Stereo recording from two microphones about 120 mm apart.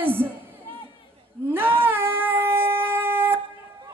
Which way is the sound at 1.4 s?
15° right (ahead or behind).